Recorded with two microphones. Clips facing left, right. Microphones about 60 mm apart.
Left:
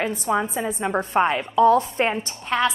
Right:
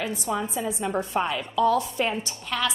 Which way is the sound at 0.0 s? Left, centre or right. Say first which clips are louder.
Left 5 dB; left.